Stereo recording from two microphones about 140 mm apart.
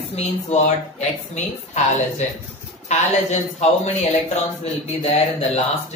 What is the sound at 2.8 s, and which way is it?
Speech, 55° left (ahead or behind).